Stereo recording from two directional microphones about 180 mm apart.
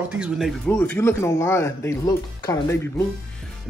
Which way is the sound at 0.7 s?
10° left (ahead or behind).